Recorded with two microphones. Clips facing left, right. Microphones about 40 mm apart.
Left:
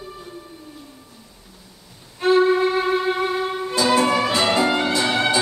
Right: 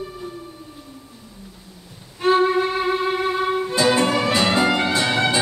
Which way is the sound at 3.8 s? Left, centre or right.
Right.